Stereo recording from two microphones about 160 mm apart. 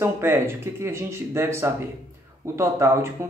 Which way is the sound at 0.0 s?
15° right (ahead or behind).